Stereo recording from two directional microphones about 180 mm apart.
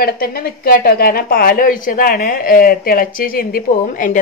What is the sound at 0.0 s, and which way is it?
Speech, 55° left (ahead or behind).